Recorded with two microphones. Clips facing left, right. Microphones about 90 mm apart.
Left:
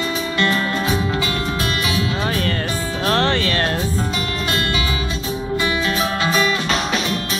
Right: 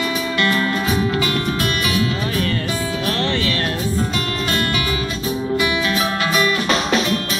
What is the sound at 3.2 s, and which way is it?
Music, 50° left (ahead or behind).